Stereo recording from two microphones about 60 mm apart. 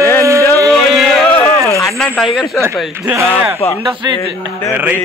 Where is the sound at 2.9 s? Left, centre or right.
Right.